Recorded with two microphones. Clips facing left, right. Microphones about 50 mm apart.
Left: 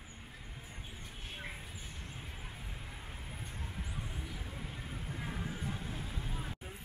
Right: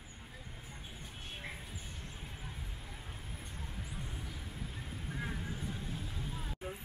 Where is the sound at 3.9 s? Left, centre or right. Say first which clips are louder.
Left 1 dB; centre.